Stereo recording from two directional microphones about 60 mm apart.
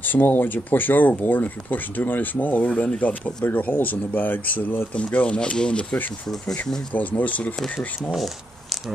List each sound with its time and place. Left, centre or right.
0.0 s speech: left
4.9 s speech: centre
6.9 s speech: left
8.1 s speech: centre